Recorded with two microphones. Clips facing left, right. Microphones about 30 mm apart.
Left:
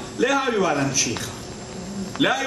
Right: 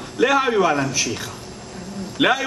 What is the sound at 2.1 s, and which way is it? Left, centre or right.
Speech, centre.